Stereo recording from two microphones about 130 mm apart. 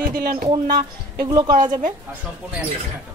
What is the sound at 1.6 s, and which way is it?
Speech, 80° right.